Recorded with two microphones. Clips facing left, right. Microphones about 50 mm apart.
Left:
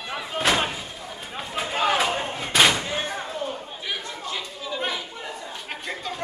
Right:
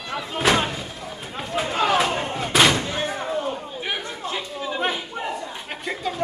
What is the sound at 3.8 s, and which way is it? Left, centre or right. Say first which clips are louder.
Chatter: right 3 dB; right.